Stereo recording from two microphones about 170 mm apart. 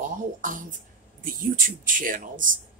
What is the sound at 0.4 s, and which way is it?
Speech, 50° right (ahead or behind).